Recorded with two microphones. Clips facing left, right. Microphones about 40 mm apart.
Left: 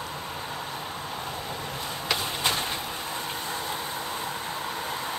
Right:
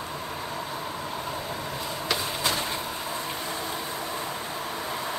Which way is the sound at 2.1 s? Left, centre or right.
Left.